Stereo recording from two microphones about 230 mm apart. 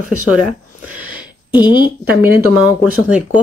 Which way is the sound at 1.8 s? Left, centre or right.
Centre.